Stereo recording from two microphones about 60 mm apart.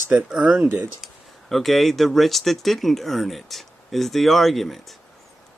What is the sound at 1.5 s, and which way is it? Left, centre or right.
Speech, centre.